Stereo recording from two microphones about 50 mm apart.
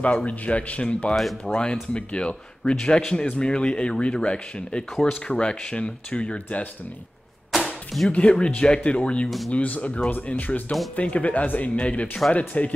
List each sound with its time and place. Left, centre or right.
0.0 s speech: left
7.5 s chop: centre
8.1 s speech: left